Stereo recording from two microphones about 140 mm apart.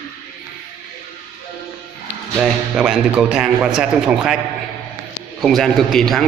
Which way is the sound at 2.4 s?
Centre (ahead or behind).